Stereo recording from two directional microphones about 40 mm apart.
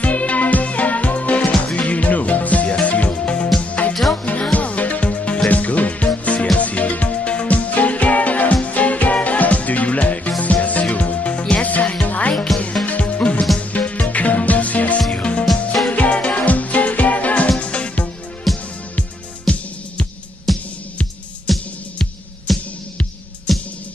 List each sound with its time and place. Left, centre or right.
0.0 s music: left
3.9 s music: centre
4.2 s music: left
18.5 s music: centre
19.4 s music: left
21.5 s music: centre